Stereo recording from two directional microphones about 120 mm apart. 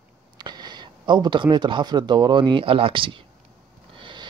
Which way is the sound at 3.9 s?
40° right (ahead or behind).